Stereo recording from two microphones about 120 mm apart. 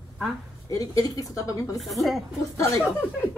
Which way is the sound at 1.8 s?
Centre (ahead or behind).